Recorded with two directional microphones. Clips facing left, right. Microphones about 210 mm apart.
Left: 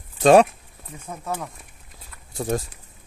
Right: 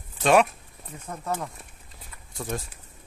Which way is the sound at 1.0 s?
5° left (ahead or behind).